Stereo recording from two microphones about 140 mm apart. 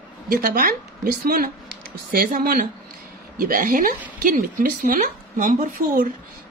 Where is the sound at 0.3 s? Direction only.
85° right.